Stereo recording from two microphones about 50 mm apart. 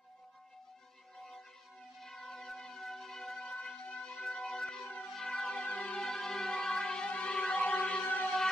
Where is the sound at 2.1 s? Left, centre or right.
Centre.